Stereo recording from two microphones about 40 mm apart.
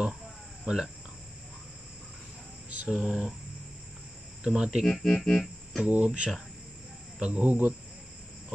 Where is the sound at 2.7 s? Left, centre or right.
Right.